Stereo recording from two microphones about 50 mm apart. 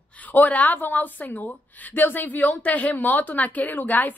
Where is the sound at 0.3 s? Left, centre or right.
Left.